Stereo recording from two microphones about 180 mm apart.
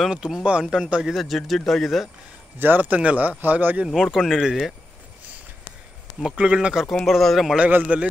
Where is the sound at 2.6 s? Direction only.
10° right (ahead or behind).